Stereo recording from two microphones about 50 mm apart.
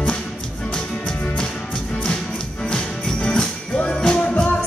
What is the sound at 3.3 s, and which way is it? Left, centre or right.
Music, centre.